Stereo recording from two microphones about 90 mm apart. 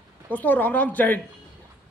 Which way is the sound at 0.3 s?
20° left (ahead or behind).